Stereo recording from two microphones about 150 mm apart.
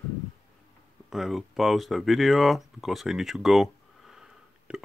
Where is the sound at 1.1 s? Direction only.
Centre (ahead or behind).